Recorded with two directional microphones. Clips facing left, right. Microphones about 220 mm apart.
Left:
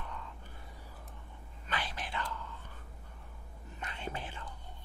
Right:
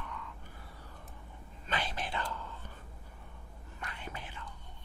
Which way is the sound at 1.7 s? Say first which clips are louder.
Right 3 dB; 25° right (ahead or behind).